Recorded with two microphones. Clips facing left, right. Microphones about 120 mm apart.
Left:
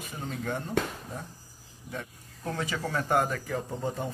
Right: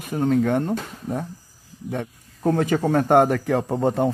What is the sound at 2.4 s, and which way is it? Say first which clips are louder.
Speech: right 12 dB; 50° right (ahead or behind).